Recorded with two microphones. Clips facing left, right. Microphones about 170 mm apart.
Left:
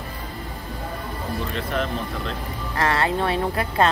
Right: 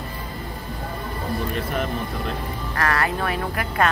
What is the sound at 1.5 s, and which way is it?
Speech, 10° right (ahead or behind).